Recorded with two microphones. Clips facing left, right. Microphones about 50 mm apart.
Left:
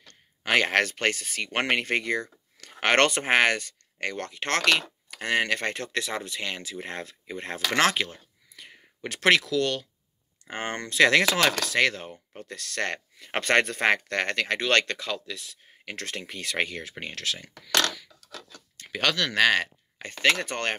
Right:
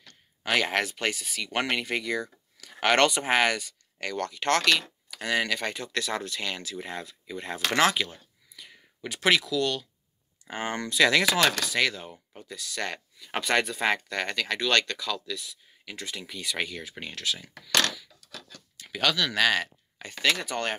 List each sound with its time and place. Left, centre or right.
0.4 s speech: left
5.9 s speech: left
6.9 s speech: left
9.0 s speech: left
10.5 s speech: left
15.5 s speech: left